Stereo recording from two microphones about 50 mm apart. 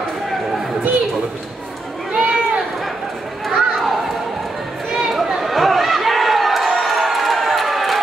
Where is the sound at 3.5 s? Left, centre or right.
Centre.